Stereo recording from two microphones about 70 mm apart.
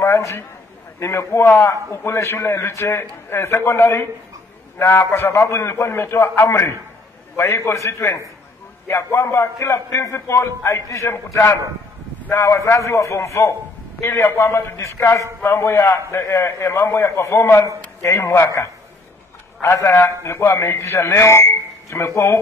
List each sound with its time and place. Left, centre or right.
0.0 s a sound: left
0.9 s a man's voice: left
12.4 s a man's voice: left